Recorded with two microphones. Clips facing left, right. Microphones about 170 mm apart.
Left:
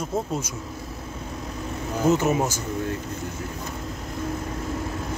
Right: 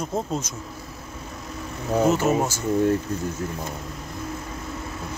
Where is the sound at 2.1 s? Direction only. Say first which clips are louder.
Right 1 dB; 15° left (ahead or behind).